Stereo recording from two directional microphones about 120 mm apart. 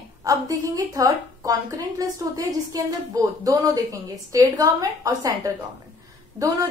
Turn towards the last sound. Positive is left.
turn(degrees=-30)  # may be behind; listen again after turning